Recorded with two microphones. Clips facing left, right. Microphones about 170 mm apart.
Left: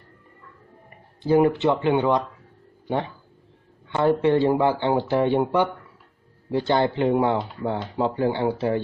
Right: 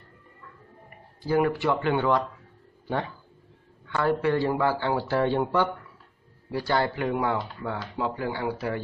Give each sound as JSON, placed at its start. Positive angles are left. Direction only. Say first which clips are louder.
{"t": 1.2, "sound": "speech", "louder": "left 5 dB", "side_deg": 25}
{"t": 3.9, "sound": "speech", "louder": "left 5 dB", "side_deg": 20}